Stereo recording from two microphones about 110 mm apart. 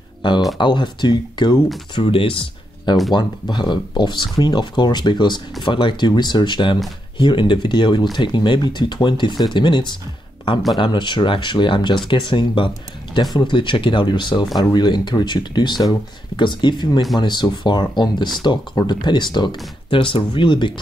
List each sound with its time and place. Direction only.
0.2 s speech: 45° left (ahead or behind)
2.0 s speech: 55° left (ahead or behind)